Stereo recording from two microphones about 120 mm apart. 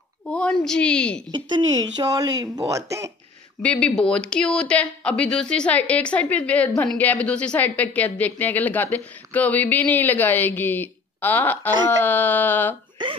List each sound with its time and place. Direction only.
0.3 s a woman's voice: 5° left (ahead or behind)
1.3 s speech: 35° right (ahead or behind)
3.6 s a woman's voice: 10° left (ahead or behind)